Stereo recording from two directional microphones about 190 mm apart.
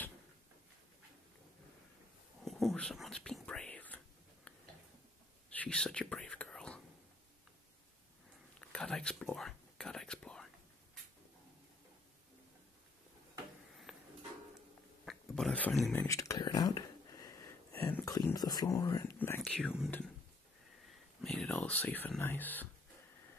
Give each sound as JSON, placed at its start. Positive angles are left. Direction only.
{"t": 2.4, "sound": "whispering", "side_deg": 0}
{"t": 5.5, "sound": "whispering", "side_deg": 5}
{"t": 8.5, "sound": "whispering", "side_deg": 5}
{"t": 13.9, "sound": "a sound", "side_deg": 0}
{"t": 15.0, "sound": "speech", "side_deg": 0}
{"t": 21.2, "sound": "speech", "side_deg": 5}